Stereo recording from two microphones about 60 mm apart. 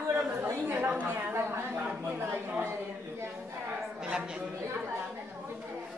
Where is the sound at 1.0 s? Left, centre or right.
Right.